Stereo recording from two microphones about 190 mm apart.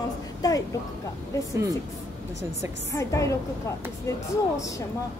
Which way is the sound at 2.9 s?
15° left (ahead or behind).